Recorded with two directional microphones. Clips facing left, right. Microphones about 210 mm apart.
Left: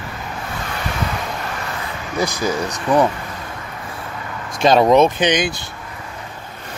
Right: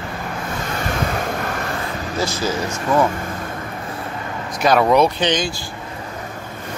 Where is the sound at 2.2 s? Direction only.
15° left (ahead or behind).